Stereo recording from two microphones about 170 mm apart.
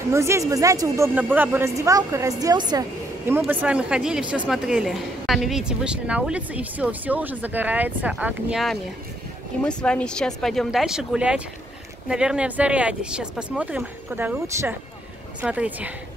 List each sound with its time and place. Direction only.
0.1 s speech: 15° right (ahead or behind)
3.3 s a woman's voice: 10° right (ahead or behind)